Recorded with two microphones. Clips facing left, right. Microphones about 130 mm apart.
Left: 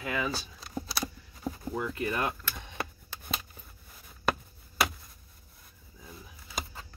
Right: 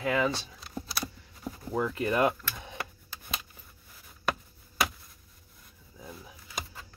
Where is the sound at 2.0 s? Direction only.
10° right (ahead or behind).